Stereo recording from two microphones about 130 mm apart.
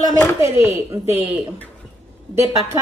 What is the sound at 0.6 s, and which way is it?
Speech, 50° left (ahead or behind).